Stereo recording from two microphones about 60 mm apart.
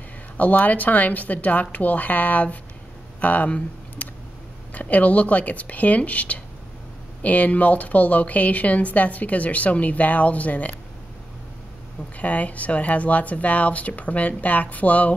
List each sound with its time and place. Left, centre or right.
0.4 s a woman's voice: left
3.2 s a sound: left
4.7 s a woman's voice: left
12.2 s a woman's voice: left